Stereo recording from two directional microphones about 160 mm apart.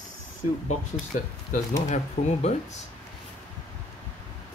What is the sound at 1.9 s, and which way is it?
Speech, 45° left (ahead or behind).